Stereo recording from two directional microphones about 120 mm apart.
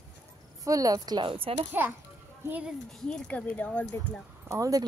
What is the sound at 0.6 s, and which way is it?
Speech, 30° right (ahead or behind).